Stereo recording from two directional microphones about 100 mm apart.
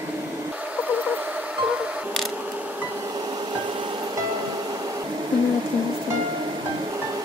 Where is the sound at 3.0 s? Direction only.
40° right (ahead or behind).